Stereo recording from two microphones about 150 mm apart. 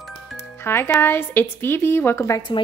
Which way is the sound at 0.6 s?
15° left (ahead or behind).